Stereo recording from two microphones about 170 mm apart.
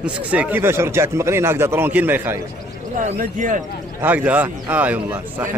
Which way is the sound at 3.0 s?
50° right (ahead or behind).